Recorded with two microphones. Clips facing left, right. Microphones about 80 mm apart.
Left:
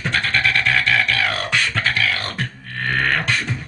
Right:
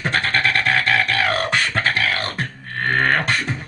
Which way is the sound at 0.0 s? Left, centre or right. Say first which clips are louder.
Right 1 dB; right.